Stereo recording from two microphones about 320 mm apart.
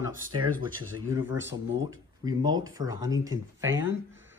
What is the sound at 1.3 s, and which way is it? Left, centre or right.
Speech, right.